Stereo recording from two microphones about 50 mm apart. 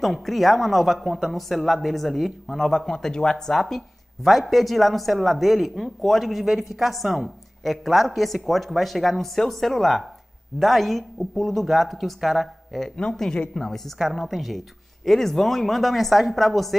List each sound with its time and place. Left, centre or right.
0.0 s speech: centre
12.8 s speech: centre